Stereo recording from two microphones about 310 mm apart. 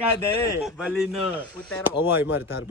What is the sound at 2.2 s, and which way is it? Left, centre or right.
Speech, left.